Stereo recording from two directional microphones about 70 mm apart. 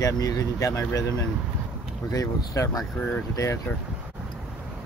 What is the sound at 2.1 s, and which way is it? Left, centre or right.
Speech, left.